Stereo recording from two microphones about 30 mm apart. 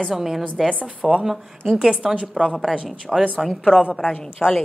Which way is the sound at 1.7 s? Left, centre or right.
Right.